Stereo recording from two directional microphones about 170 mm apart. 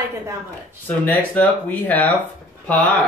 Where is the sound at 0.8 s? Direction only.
10° left (ahead or behind).